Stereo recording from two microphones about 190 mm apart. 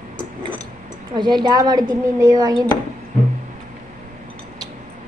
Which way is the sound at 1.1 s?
20° right (ahead or behind).